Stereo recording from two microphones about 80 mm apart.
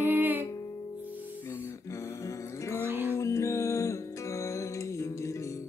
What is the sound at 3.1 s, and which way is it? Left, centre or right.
Music, left.